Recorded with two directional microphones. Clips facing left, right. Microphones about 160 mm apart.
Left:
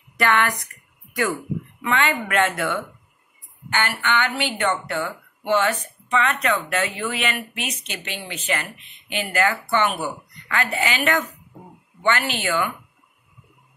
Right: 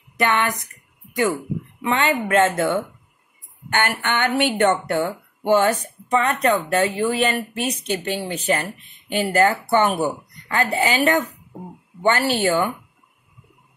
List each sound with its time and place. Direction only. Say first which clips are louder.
0.2 s speech: even; 20° right (ahead or behind)
1.8 s speech: right 2 dB; 30° right (ahead or behind)
3.7 s a woman's voice: right 1 dB; 50° right (ahead or behind)
11.5 s speech: right 9 dB; 15° right (ahead or behind)
12.0 s a woman's voice: right 4 dB; 40° right (ahead or behind)